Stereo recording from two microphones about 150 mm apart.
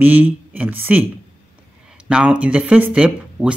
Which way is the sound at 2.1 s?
5° right (ahead or behind).